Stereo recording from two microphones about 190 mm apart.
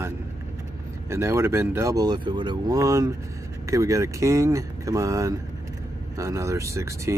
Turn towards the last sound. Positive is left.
turn(degrees=-15)  # may be behind; listen again after turning